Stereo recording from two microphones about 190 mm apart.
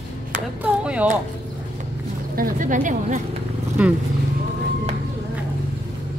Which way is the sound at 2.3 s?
45° right (ahead or behind).